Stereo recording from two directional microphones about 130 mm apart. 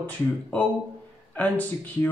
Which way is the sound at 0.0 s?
10° left (ahead or behind).